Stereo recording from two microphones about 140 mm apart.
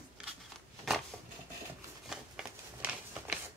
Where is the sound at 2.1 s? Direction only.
5° right (ahead or behind).